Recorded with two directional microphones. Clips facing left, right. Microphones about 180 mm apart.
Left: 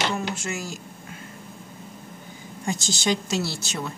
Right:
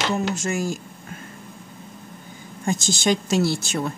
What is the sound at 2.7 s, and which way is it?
Speech, 50° right (ahead or behind).